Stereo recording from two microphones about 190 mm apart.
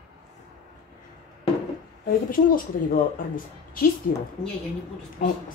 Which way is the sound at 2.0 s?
45° left (ahead or behind).